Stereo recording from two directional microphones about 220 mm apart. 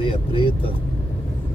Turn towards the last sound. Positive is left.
turn(degrees=25)  # may be behind; listen again after turning